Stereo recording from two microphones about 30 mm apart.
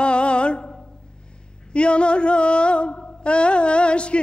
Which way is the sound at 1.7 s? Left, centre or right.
Left.